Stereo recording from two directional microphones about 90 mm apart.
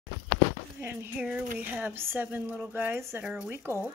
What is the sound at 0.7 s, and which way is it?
Speech, 25° right (ahead or behind).